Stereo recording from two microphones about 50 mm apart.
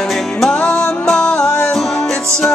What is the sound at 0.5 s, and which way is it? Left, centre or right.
Music, left.